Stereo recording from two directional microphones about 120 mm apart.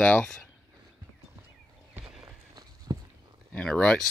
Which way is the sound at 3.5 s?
10° left (ahead or behind).